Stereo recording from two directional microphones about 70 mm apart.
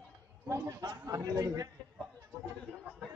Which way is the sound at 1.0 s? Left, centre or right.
Right.